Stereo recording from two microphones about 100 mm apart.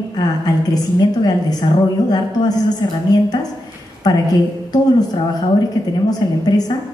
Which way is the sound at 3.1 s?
40° left (ahead or behind).